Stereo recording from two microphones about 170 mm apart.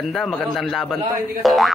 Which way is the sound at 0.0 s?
Centre (ahead or behind).